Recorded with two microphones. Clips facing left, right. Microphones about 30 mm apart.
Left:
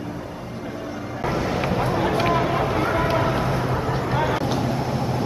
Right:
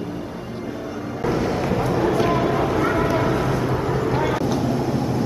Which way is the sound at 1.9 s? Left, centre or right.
Left.